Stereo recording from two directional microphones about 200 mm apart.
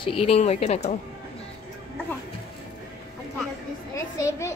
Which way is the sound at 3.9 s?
15° left (ahead or behind).